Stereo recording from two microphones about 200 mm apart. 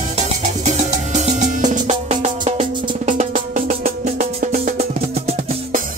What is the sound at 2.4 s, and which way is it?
Music, 25° right (ahead or behind).